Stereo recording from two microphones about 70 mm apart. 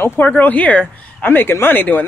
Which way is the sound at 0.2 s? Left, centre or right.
Left.